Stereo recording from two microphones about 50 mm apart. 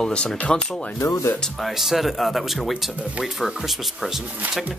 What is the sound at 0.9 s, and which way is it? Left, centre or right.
Speech, left.